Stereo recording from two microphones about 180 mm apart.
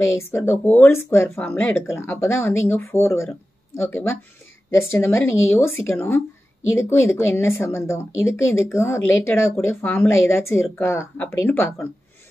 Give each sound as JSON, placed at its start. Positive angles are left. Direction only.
{"t": 0.3, "sound": "speech", "side_deg": 10}
{"t": 8.1, "sound": "speech", "side_deg": 90}
{"t": 8.5, "sound": "speech", "side_deg": 15}